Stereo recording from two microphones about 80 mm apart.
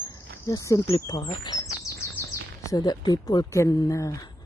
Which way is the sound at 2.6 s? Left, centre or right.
Left.